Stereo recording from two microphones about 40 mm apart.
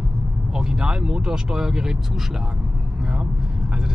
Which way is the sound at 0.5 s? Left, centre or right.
Centre.